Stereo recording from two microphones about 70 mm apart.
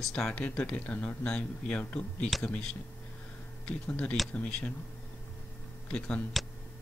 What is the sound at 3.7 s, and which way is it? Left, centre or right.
Speech, centre.